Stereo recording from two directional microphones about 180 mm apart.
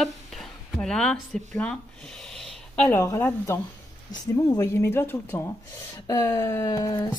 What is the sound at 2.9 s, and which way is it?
Speech, 15° left (ahead or behind).